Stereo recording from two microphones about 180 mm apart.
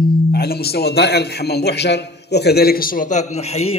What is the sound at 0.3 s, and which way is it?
A man's voice, 60° left (ahead or behind).